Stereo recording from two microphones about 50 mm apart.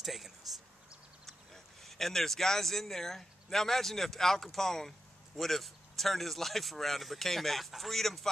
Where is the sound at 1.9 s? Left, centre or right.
Centre.